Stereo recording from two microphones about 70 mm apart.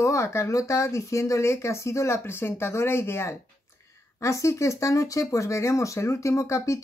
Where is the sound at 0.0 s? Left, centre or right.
Left.